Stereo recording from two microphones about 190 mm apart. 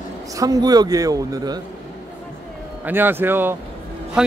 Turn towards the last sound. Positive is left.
turn(degrees=-5)  # may be behind; listen again after turning